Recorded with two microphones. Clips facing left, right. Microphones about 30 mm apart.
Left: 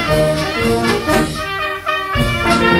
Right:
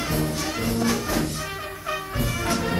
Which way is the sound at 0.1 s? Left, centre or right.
Left.